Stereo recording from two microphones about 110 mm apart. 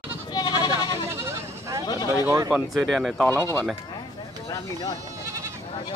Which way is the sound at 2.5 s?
Centre (ahead or behind).